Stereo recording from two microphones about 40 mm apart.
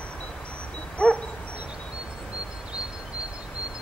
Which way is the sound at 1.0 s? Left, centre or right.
Left.